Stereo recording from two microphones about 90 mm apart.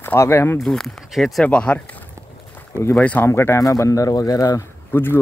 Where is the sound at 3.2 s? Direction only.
30° left (ahead or behind).